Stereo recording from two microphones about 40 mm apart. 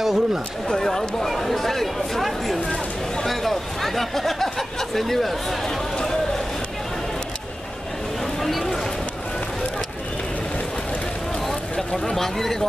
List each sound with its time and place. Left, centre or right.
0.0 s chatter: centre
0.7 s speech: centre
1.3 s chatter: centre
3.3 s a sound: centre
8.4 s a sound: centre
11.7 s speech: centre